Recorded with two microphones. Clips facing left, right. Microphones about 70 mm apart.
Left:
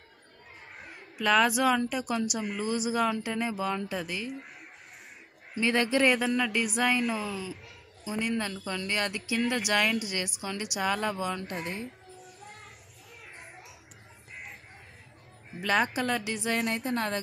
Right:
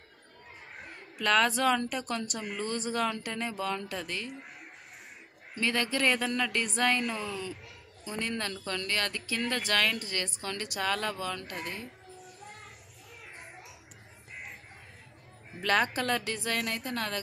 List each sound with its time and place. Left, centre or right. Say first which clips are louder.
0.7 s speech: left 2 dB; centre
5.6 s speech: left 4 dB; centre
13.4 s music: even; centre
15.6 s speech: left 1 dB; centre
16.9 s a woman's voice: left 3 dB; left